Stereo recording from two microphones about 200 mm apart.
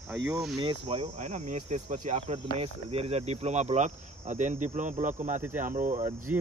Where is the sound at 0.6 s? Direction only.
25° right (ahead or behind).